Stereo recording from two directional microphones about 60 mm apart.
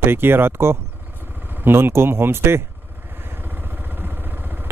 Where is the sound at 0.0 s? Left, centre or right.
Right.